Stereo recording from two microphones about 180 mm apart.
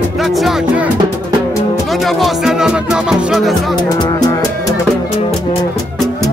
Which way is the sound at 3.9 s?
20° left (ahead or behind).